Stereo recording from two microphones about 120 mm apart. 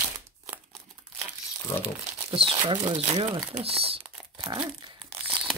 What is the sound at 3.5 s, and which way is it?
Speech, 55° right (ahead or behind).